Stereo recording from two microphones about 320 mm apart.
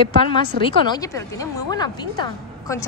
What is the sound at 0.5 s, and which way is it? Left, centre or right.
Speech, right.